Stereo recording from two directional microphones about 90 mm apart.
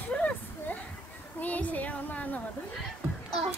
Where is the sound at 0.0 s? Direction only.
15° left (ahead or behind).